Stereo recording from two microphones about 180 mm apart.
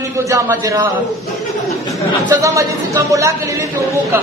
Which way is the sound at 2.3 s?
15° right (ahead or behind).